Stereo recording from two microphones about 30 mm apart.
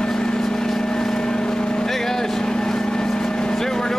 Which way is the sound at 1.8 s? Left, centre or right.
Centre.